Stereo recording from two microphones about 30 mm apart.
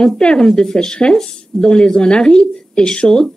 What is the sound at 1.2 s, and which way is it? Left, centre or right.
Speech, left.